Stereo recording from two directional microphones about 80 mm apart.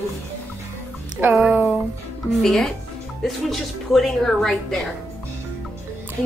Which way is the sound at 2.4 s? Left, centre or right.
Centre.